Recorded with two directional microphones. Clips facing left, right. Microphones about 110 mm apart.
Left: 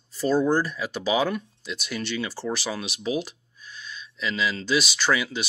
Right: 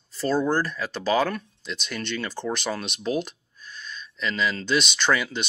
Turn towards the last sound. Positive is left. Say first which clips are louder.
# right 1 dB
turn(degrees=5)  # may be behind; listen again after turning